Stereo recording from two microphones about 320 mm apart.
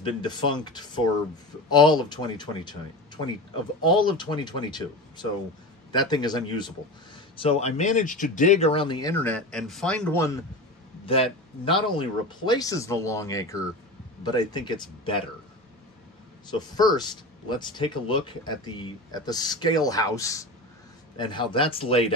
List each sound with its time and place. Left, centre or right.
0.0 s a man's voice: centre
16.4 s speech: centre